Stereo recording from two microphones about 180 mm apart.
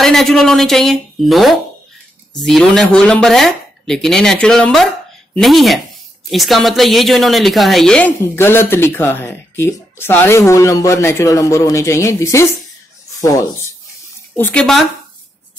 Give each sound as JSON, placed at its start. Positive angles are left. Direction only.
{"t": 0.0, "sound": "a woman's voice", "side_deg": 0}